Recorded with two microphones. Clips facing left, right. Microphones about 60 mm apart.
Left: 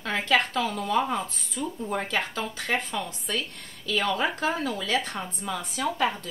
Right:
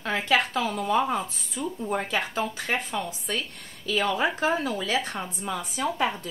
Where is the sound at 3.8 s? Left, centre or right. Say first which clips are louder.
Right 1 dB; centre.